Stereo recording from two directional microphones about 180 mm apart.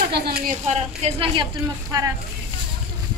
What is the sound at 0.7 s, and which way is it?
Speech, 40° right (ahead or behind).